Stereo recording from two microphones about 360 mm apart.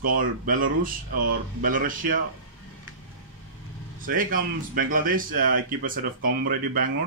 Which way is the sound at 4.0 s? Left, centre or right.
Right.